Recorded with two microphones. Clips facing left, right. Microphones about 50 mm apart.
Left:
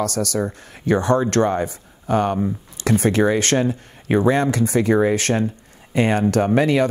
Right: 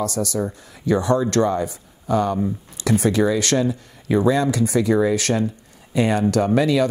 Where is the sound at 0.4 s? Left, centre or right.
Left.